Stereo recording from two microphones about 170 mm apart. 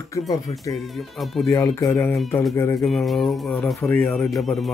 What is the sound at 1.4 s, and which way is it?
Speech, 20° left (ahead or behind).